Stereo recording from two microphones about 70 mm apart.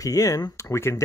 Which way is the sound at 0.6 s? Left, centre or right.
Left.